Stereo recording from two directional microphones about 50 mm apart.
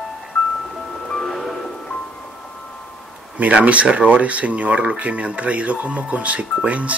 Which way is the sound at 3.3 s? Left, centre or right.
Right.